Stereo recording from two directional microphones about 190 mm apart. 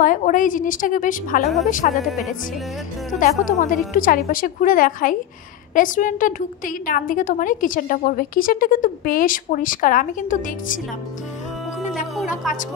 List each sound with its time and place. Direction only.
0.0 s a woman's voice: 45° left (ahead or behind)
3.1 s a woman's voice: 45° left (ahead or behind)
12.4 s a woman's voice: centre (ahead or behind)